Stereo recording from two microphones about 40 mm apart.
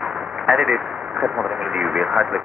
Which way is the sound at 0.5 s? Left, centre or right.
Centre.